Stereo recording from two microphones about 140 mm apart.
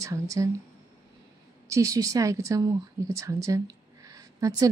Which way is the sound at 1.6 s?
25° right (ahead or behind).